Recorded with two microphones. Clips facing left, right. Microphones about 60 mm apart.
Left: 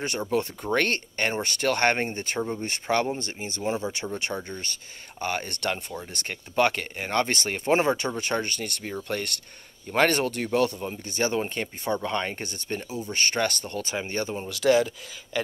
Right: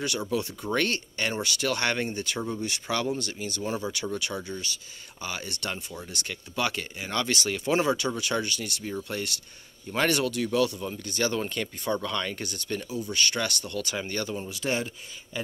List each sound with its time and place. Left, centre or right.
0.3 s speech: left
14.5 s speech: left